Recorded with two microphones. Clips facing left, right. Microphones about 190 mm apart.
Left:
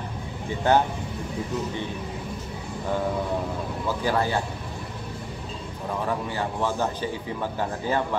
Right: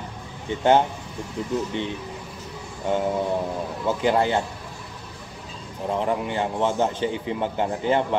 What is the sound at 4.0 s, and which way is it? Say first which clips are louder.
Speech: right 4 dB; 20° right (ahead or behind).